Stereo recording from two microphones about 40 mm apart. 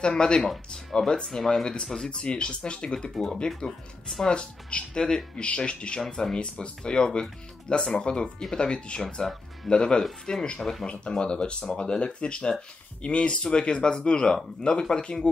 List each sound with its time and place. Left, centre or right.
0.0 s speech: left
5.9 s speech: centre
10.6 s speech: centre
10.9 s speech: left